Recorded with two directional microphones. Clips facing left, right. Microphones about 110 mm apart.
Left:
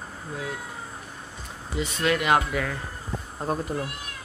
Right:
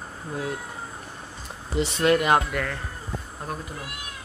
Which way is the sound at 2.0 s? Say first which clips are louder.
Right 3 dB; 35° right (ahead or behind).